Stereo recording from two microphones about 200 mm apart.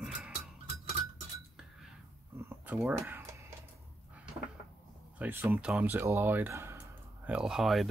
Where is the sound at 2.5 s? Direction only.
10° right (ahead or behind).